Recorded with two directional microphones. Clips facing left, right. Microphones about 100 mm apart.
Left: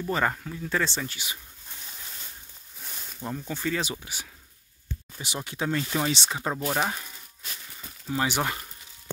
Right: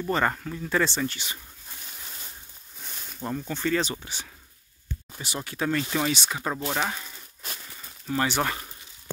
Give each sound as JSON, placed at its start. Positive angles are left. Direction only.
{"t": 0.0, "sound": "speech", "side_deg": 0}
{"t": 2.8, "sound": "a sound", "side_deg": 0}
{"t": 3.3, "sound": "speech", "side_deg": 5}
{"t": 5.2, "sound": "speech", "side_deg": 20}
{"t": 8.1, "sound": "speech", "side_deg": 15}